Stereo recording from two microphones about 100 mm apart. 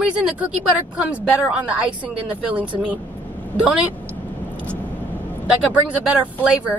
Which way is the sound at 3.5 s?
20° left (ahead or behind).